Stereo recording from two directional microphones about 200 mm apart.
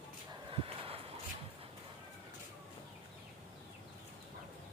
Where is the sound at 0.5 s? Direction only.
30° right (ahead or behind).